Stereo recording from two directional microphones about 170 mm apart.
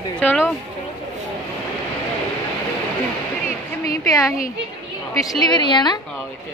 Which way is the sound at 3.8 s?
20° left (ahead or behind).